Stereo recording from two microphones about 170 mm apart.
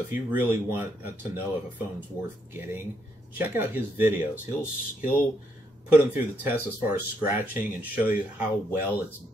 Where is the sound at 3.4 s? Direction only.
15° right (ahead or behind).